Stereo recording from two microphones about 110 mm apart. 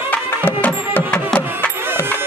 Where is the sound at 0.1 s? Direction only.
15° left (ahead or behind).